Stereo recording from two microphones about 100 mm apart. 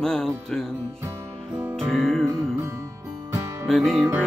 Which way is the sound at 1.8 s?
5° left (ahead or behind).